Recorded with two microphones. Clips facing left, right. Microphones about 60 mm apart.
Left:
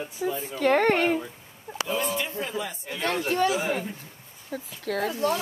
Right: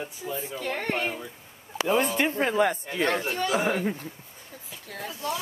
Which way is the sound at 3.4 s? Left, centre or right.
Right.